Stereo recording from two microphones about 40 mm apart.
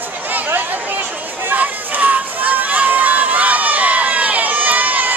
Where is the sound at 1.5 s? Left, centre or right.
Right.